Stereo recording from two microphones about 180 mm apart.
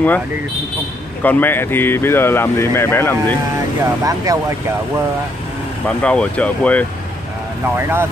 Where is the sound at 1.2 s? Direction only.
10° left (ahead or behind).